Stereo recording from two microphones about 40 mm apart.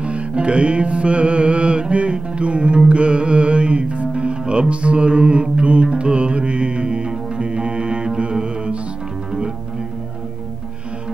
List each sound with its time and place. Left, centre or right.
0.0 s music: right